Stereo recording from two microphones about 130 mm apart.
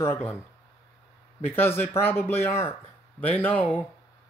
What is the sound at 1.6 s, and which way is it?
Speech, 15° left (ahead or behind).